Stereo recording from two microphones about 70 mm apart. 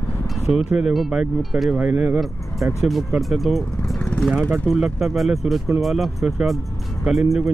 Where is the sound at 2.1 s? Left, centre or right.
Centre.